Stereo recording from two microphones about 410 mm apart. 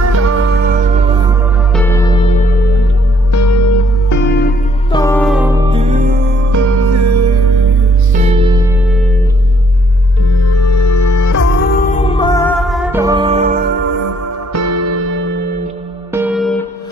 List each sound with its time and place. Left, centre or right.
0.1 s music: right
1.7 s music: centre
3.3 s music: left
4.2 s music: left
4.9 s music: centre
6.5 s music: right
8.1 s music: centre
10.4 s music: left
11.3 s music: left; by 13.7 s centre
14.5 s music: right
16.1 s music: centre